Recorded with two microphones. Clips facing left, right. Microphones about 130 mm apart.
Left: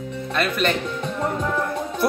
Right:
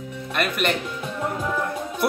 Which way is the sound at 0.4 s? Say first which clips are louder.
Left 1 dB; 15° right (ahead or behind).